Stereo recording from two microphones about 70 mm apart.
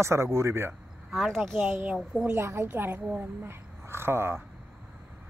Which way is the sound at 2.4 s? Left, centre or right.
Right.